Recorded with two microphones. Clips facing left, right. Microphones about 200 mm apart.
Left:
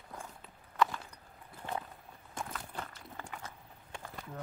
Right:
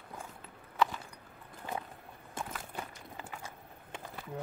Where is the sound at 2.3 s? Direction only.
10° right (ahead or behind).